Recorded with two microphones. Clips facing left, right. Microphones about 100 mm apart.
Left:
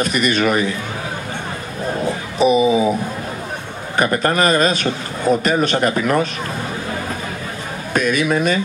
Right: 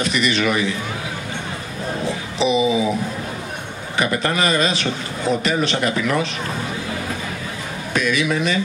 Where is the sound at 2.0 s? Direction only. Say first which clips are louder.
Left 5 dB; 45° left (ahead or behind).